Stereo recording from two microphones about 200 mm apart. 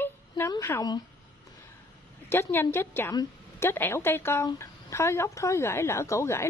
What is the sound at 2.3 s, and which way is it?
A woman's voice, 10° left (ahead or behind).